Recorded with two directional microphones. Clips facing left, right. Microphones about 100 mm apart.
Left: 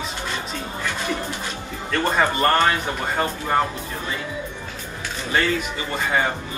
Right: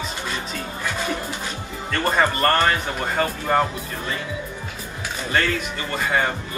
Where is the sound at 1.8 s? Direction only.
Centre (ahead or behind).